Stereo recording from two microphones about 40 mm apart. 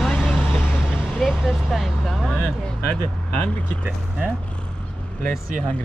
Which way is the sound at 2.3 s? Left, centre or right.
Left.